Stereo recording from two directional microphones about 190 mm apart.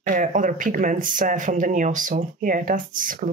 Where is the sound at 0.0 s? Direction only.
45° right (ahead or behind).